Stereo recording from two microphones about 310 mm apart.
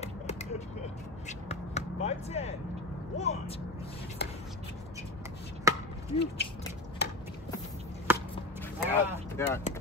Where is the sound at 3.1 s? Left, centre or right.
Left.